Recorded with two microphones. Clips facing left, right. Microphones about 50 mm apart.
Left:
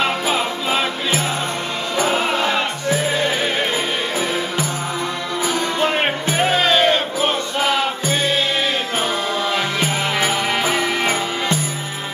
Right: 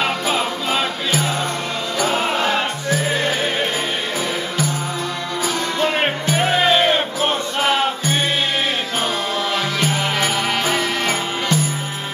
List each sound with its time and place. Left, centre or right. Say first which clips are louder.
0.0 s music: left 1 dB; centre
2.0 s music: left 1 dB; left
5.4 s music: left 1 dB; centre
6.5 s music: even; centre
9.5 s music: even; centre